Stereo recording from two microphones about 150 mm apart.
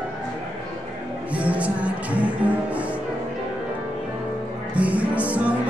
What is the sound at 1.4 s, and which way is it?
Music, 10° right (ahead or behind).